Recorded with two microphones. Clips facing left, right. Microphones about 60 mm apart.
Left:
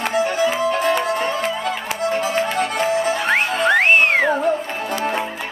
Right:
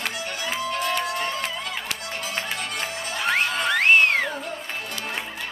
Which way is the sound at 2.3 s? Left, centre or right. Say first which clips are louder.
Left 10 dB; centre.